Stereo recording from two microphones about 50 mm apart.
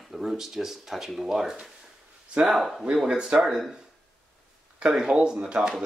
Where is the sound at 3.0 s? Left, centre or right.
Centre.